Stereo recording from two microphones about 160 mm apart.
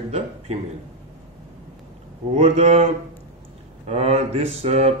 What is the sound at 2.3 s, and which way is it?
Speech, 40° right (ahead or behind).